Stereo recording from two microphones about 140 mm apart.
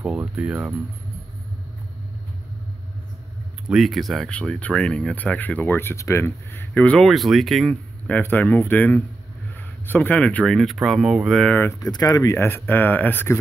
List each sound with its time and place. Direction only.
0.0 s speech: 10° right (ahead or behind)
3.6 s speech: centre (ahead or behind)
8.2 s speech: 15° left (ahead or behind)
11.5 s speech: 20° left (ahead or behind)